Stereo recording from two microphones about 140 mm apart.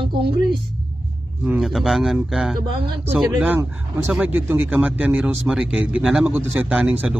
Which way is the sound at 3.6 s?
20° right (ahead or behind).